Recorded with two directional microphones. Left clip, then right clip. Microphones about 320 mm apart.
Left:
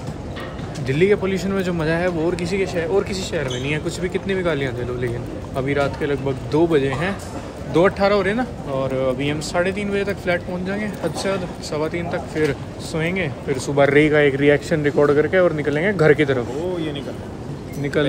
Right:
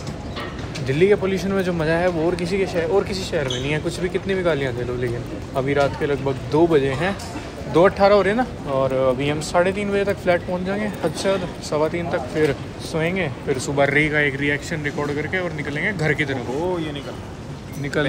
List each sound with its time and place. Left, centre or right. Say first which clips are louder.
0.8 s speech: even; centre; by 16.3 s left
18.0 s speech: left 2 dB; centre